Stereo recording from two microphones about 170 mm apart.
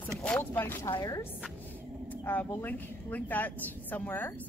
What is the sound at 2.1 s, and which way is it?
A woman's voice, 10° left (ahead or behind).